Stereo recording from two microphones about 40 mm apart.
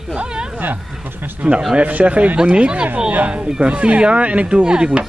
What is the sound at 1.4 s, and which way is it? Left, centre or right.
Speech, right.